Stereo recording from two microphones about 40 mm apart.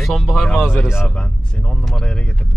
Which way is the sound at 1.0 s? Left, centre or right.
Left.